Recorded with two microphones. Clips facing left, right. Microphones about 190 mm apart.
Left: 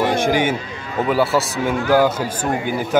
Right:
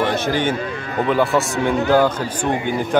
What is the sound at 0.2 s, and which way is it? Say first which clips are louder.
A man's voice: left 2 dB; 10° left (ahead or behind).